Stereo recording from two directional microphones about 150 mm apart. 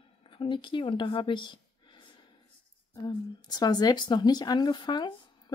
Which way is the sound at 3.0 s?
25° left (ahead or behind).